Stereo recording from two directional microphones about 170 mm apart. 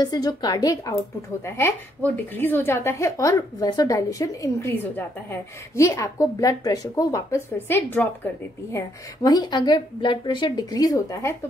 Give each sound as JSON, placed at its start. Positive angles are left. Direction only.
{"t": 0.0, "sound": "a woman's voice", "side_deg": 25}
{"t": 8.7, "sound": "a woman's voice", "side_deg": 20}